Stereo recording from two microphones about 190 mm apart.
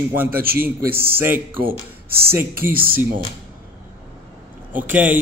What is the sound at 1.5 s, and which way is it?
Speech, 50° right (ahead or behind).